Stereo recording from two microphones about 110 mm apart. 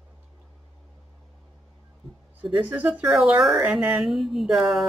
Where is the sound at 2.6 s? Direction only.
15° right (ahead or behind).